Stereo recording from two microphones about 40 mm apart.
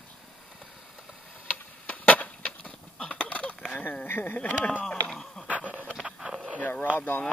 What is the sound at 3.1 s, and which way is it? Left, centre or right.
Honk, left.